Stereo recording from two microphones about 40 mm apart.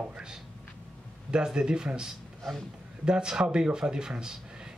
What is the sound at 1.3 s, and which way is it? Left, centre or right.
Speech, right.